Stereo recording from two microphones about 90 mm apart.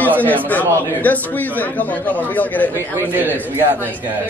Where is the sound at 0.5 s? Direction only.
20° left (ahead or behind).